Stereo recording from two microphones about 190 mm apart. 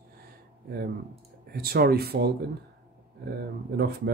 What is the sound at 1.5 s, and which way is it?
Speech, 55° right (ahead or behind).